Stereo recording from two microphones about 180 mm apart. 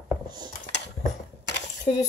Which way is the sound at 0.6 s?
75° left (ahead or behind).